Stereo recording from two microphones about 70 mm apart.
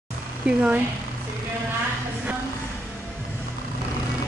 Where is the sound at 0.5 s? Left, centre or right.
Centre.